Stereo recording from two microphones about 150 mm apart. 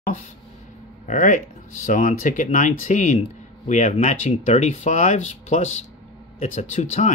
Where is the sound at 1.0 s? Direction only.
55° left (ahead or behind).